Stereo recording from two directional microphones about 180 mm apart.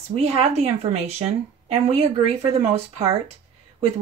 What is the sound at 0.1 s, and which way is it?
Speech, 35° right (ahead or behind).